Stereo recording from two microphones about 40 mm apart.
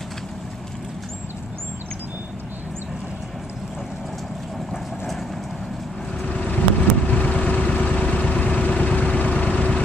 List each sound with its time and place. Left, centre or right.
6.2 s vehicle: left